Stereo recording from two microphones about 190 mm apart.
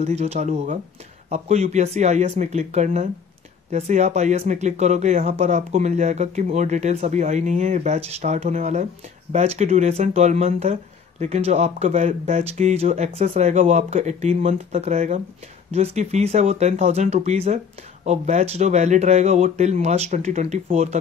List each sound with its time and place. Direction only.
0.0 s speech: 35° right (ahead or behind)